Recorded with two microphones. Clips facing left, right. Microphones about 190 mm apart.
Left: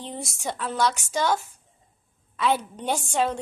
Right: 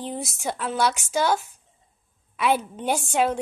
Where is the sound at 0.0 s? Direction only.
5° right (ahead or behind).